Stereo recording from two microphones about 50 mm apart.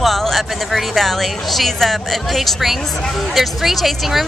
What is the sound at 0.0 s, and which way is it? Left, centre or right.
Speech, centre.